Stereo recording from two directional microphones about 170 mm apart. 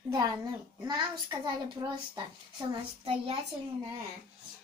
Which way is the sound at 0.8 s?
25° right (ahead or behind).